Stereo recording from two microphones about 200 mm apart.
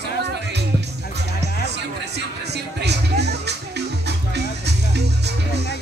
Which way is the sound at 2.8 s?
55° right (ahead or behind).